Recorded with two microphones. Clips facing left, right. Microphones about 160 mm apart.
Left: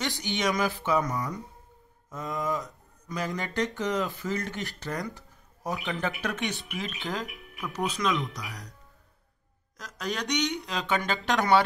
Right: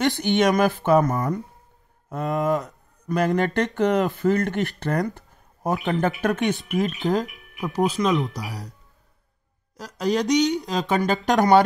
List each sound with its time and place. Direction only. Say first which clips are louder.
0.2 s a sound: right 7 dB; 55° right (ahead or behind)
2.0 s speech: right 8 dB; 65° right (ahead or behind); by 8.7 s 35° right (ahead or behind)
9.8 s speech: right 10 dB; 35° right (ahead or behind)